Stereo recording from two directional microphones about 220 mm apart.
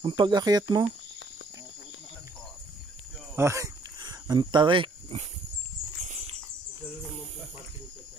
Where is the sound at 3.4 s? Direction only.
15° right (ahead or behind); by 6.3 s 30° right (ahead or behind).